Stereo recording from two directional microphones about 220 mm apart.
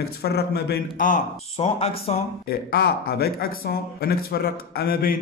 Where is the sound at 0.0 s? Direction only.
45° left (ahead or behind).